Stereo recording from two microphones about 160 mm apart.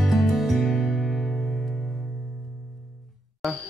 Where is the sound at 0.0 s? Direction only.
Centre (ahead or behind).